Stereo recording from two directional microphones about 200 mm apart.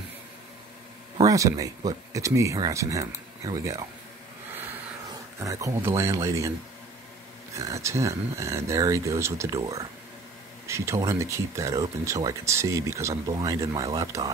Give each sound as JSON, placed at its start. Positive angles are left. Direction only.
{"t": 1.1, "sound": "speech", "side_deg": -15}
{"t": 5.4, "sound": "speech", "side_deg": -15}
{"t": 7.5, "sound": "speech", "side_deg": -15}